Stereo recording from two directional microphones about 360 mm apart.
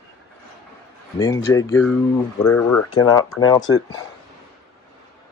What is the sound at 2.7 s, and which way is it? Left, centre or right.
Speech, left.